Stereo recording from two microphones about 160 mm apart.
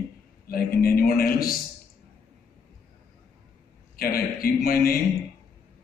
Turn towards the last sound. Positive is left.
turn(degrees=70)  # may be behind; listen again after turning